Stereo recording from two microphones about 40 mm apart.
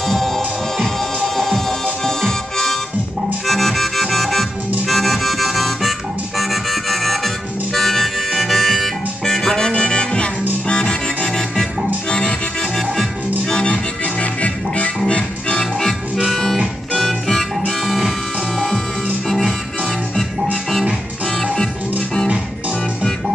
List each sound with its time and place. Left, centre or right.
0.0 s music: centre
3.4 s harmonica: centre
9.7 s music: left
13.5 s music: left
14.2 s music: left
16.3 s harmonica: centre
16.9 s music: centre
19.2 s music: centre